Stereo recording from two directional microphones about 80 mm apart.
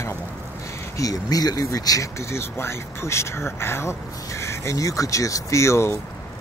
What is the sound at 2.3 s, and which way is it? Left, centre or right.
Speech, left.